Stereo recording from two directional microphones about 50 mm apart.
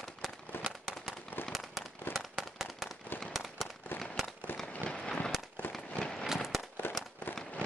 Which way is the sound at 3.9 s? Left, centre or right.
Left.